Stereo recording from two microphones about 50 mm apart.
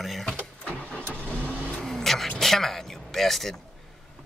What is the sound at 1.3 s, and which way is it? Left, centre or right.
Car, left.